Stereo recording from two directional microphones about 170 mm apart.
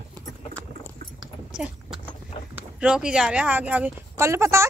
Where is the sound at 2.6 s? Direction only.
5° right (ahead or behind).